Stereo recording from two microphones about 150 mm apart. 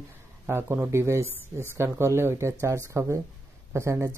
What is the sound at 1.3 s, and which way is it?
Speech, 15° left (ahead or behind).